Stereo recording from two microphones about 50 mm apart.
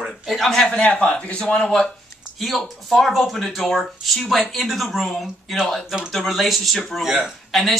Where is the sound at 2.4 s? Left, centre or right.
Centre.